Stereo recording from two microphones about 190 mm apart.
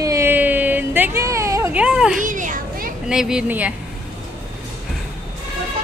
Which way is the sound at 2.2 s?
45° right (ahead or behind).